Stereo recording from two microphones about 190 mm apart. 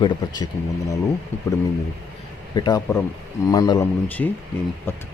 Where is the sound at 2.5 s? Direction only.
20° left (ahead or behind).